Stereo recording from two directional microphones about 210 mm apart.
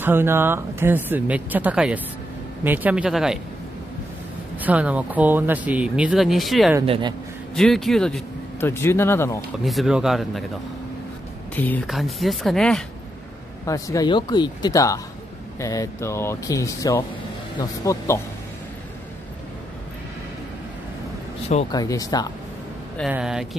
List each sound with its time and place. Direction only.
0.0 s speech: 10° right (ahead or behind)
4.6 s speech: 5° right (ahead or behind)
6.9 s speech: 20° right (ahead or behind)
7.5 s speech: centre (ahead or behind)
9.7 s speech: centre (ahead or behind)
11.5 s speech: 10° left (ahead or behind)
13.7 s speech: 15° left (ahead or behind)
21.7 s speech: 15° left (ahead or behind)
22.9 s speech: 5° right (ahead or behind)